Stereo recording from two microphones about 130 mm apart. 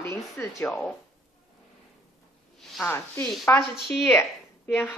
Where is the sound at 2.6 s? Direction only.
Centre (ahead or behind).